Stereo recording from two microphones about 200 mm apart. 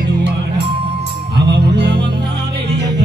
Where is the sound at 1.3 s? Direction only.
55° right (ahead or behind).